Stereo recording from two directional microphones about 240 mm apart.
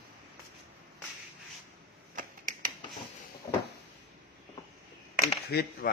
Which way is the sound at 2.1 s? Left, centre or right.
Right.